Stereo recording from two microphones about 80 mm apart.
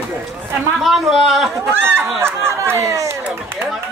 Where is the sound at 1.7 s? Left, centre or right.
Right.